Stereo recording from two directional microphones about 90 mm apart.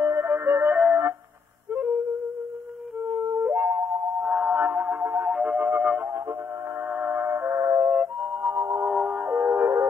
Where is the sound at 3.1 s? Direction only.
30° right (ahead or behind).